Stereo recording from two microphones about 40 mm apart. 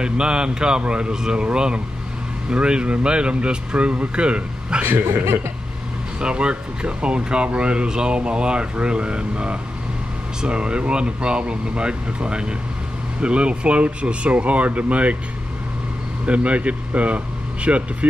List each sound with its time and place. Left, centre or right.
0.0 s speech: right
4.8 s speech: right
6.2 s speech: right
16.3 s speech: right